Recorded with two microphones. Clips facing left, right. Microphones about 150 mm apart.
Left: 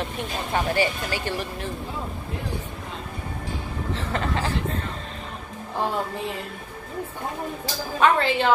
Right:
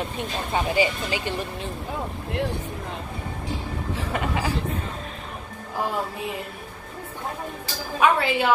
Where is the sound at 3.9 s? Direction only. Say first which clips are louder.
Even; 10° right (ahead or behind).